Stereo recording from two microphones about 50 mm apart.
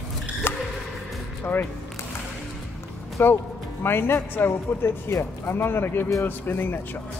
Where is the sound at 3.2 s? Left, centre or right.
Left.